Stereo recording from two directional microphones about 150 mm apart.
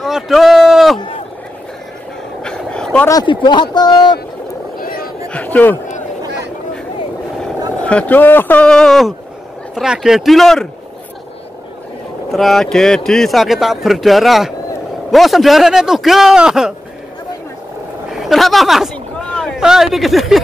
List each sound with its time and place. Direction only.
0.0 s speech: centre (ahead or behind)
2.4 s vehicle: 5° left (ahead or behind)
3.1 s speech: 25° left (ahead or behind)
4.7 s a sound: 70° left (ahead or behind)
5.3 s a sound: 10° left (ahead or behind)
7.8 s speech: 10° left (ahead or behind)
12.3 s speech: centre (ahead or behind)
18.1 s speech: centre (ahead or behind)